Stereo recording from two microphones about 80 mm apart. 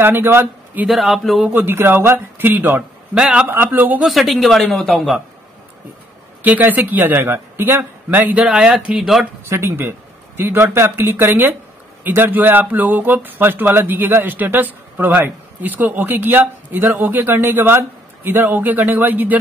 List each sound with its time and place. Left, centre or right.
0.0 s a man's voice: right
0.8 s speech: centre
1.5 s speech: right
3.2 s speech: centre
3.4 s speech: right
4.0 s speech: centre
6.4 s speech: right
8.5 s speech: centre
9.5 s speech: right